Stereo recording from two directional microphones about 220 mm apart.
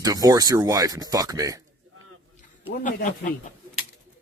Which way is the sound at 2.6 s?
35° left (ahead or behind).